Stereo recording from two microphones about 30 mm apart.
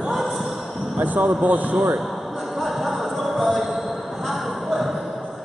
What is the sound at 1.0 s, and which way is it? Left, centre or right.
Speech, right.